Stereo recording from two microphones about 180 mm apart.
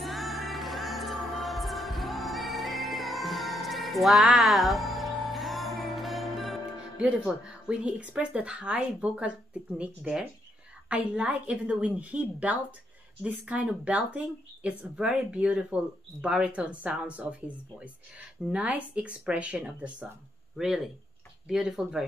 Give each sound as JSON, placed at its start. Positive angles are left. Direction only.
{"t": 0.0, "sound": "music", "side_deg": 0}
{"t": 10.9, "sound": "speech", "side_deg": -5}